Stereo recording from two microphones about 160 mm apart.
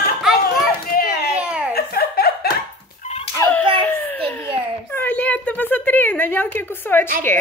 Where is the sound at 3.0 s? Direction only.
40° left (ahead or behind).